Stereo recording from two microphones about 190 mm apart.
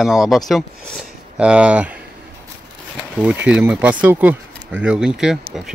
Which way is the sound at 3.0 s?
10° right (ahead or behind).